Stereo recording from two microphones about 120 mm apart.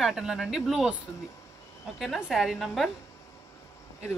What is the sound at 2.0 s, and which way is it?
Speech, centre (ahead or behind).